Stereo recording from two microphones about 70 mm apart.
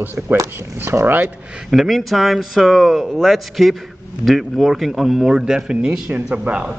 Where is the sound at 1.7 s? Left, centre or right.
Centre.